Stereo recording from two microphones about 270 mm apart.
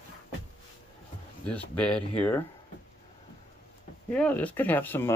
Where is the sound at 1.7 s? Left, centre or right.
Centre.